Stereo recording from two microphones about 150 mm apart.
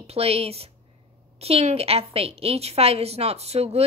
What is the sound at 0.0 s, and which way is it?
A woman's voice, 40° right (ahead or behind).